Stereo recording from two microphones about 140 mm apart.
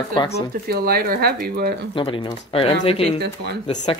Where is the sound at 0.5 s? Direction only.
90° right.